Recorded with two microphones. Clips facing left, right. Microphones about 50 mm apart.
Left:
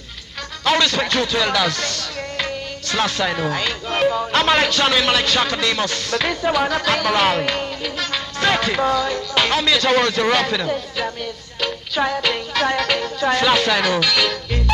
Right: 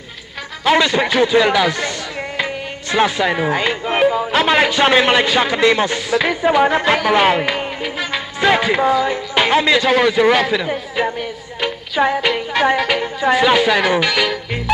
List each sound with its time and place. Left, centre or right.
0.7 s speech: centre
9.8 s speech: centre
11.0 s music: right